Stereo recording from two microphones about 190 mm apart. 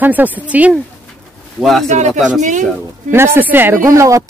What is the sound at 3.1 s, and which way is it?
Speech, 10° right (ahead or behind).